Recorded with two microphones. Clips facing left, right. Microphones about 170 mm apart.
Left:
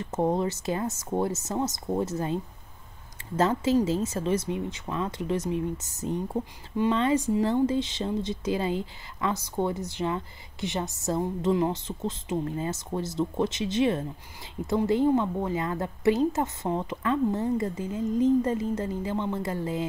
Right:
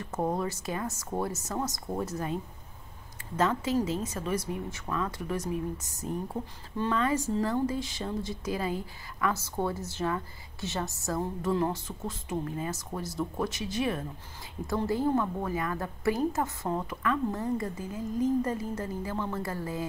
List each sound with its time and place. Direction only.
0.0 s speech: 25° left (ahead or behind)
6.8 s speech: 20° left (ahead or behind)